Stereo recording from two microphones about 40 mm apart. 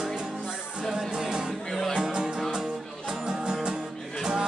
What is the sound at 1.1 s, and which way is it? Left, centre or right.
Music, centre.